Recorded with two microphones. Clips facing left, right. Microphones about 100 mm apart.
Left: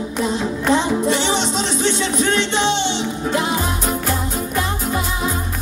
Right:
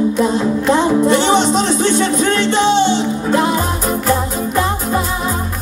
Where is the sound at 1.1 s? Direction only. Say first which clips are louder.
Right 7 dB; 50° right (ahead or behind).